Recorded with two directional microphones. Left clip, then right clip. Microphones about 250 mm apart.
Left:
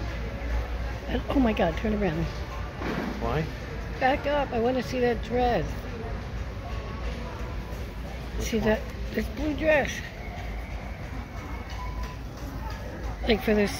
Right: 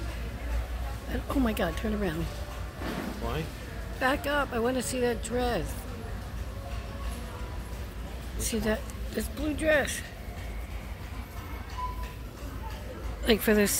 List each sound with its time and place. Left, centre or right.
1.1 s speech: centre
4.0 s speech: centre
8.5 s speech: centre
13.2 s speech: right